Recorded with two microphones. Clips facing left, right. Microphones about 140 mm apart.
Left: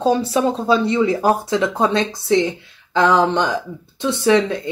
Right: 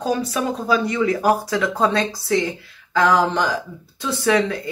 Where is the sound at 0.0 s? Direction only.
30° left (ahead or behind).